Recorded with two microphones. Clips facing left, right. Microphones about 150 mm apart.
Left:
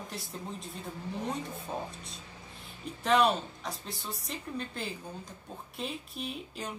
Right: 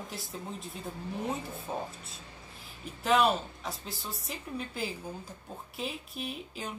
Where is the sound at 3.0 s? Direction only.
Centre (ahead or behind).